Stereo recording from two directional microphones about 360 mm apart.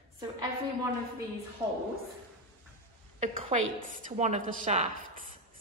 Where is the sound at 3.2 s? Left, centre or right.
Right.